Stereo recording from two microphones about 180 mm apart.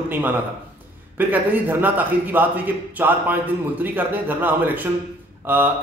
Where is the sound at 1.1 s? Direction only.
10° right (ahead or behind).